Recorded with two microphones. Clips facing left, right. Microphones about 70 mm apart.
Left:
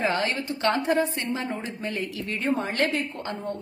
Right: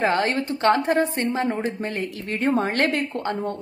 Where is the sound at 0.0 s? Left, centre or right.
Right.